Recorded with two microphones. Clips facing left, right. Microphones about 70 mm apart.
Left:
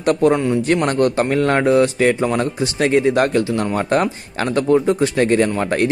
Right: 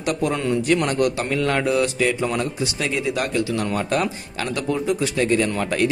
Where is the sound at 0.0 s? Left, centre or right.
Left.